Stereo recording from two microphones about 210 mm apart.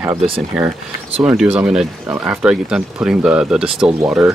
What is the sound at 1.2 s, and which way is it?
Speech, 5° right (ahead or behind).